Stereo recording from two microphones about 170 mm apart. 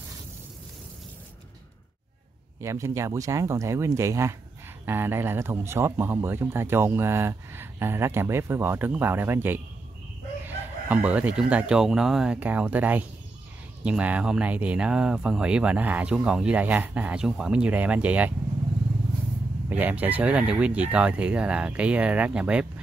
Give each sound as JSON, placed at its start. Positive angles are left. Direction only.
{"t": 2.6, "sound": "speech", "side_deg": -15}
{"t": 19.7, "sound": "speech", "side_deg": -10}